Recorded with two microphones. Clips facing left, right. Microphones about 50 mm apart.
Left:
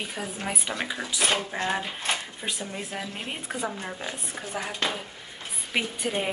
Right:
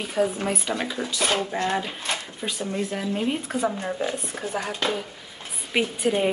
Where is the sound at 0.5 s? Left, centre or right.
Centre.